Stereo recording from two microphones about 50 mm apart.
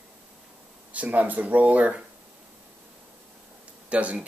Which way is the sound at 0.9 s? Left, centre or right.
Right.